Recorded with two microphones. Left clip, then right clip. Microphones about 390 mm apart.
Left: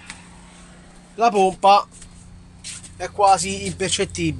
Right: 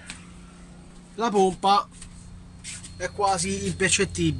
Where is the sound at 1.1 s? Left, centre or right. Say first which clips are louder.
Left 5 dB; centre.